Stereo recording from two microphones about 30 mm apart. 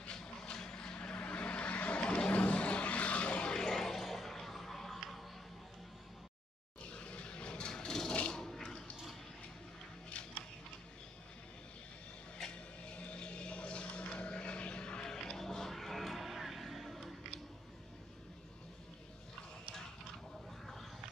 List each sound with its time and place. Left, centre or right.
0.0 s vehicle: left
2.0 s vehicle: left
3.4 s music: left
3.7 s music: centre
6.9 s vehicle: left
8.4 s a sound: centre
10.1 s a sound: left
12.4 s vehicle: left
15.0 s music: centre
16.2 s vehicle: centre